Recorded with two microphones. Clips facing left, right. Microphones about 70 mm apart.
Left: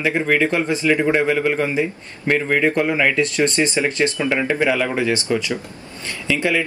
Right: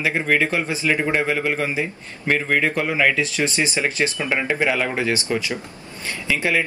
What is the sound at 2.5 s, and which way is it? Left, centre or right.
Speech, centre.